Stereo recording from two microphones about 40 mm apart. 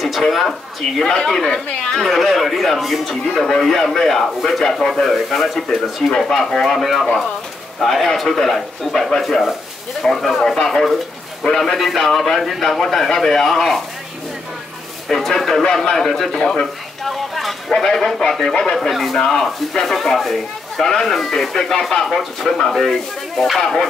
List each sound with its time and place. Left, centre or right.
0.2 s speech: centre
1.0 s a man's voice: centre
1.9 s a man's voice: centre
15.0 s a man's voice: centre
17.0 s a sound: centre
17.6 s a man's voice: centre
18.8 s a man's voice: centre